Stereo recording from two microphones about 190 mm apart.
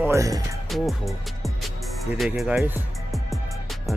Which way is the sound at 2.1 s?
Centre (ahead or behind).